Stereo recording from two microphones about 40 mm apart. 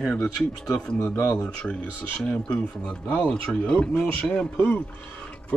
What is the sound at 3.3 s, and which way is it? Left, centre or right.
Speech, left.